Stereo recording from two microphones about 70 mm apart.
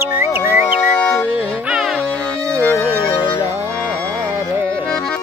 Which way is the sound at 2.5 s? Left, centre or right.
Left.